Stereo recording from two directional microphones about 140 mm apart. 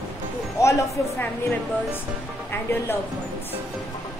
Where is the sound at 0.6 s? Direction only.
20° left (ahead or behind).